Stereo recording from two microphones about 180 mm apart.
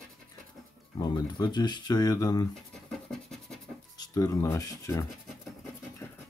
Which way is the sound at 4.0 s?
20° left (ahead or behind).